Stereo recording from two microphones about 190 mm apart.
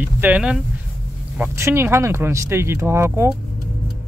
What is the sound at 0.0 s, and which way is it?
Speech, 10° right (ahead or behind).